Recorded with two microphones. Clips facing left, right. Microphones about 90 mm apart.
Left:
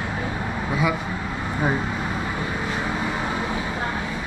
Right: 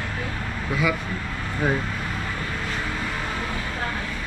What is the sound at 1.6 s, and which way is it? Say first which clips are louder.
Vehicle: even; 20° left (ahead or behind).